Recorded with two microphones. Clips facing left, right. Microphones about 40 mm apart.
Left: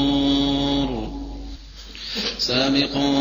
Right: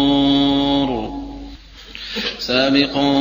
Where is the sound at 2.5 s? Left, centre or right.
Right.